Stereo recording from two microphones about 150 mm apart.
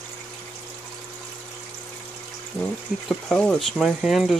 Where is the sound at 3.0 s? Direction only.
5° left (ahead or behind).